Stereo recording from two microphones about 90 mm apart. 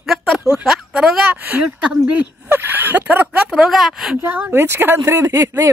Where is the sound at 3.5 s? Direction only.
Centre (ahead or behind).